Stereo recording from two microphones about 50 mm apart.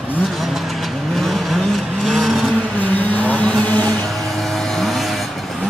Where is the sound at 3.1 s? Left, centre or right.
Left.